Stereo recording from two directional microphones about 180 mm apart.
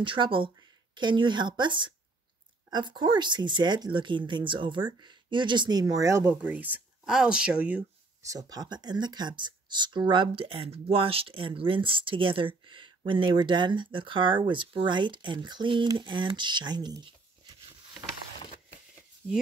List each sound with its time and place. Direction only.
0.0 s speech: 30° right (ahead or behind)